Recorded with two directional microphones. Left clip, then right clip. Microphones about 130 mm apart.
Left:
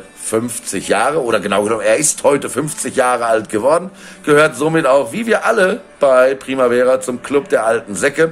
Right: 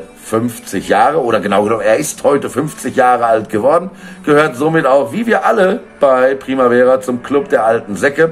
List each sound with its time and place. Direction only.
0.3 s speech: 25° left (ahead or behind)